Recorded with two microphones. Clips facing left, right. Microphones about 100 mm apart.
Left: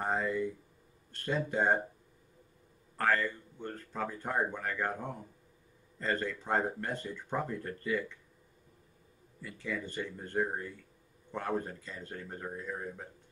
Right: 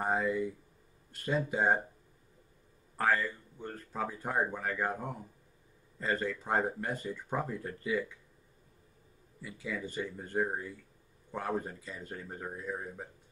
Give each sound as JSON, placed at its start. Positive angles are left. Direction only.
{"t": 0.0, "sound": "speech", "side_deg": -10}
{"t": 3.0, "sound": "speech", "side_deg": -10}
{"t": 9.4, "sound": "speech", "side_deg": -10}